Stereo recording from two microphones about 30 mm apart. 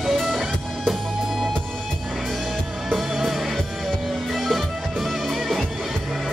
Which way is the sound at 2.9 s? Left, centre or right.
Centre.